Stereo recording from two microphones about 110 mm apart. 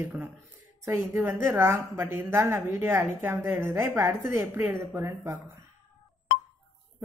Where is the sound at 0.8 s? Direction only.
25° right (ahead or behind).